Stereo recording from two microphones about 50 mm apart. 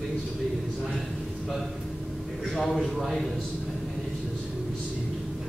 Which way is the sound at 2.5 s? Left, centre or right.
Centre.